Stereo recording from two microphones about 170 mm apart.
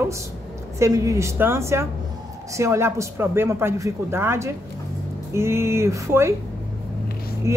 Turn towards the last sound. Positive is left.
turn(degrees=-15)  # may be behind; listen again after turning